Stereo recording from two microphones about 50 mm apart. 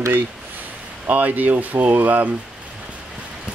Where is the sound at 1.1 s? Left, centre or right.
Right.